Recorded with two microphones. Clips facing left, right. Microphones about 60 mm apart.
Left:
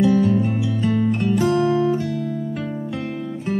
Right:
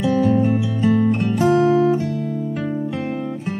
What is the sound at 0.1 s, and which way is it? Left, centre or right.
Music, centre.